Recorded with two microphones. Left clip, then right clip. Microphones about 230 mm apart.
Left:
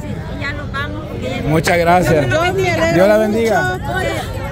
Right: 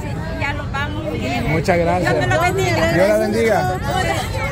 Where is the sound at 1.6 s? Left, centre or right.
Left.